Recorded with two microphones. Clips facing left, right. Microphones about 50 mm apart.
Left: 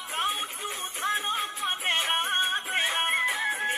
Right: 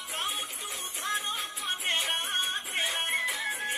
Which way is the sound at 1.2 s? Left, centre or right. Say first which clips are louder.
Left 5 dB; left.